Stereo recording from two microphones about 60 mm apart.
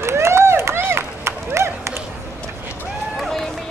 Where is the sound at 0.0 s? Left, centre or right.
Right.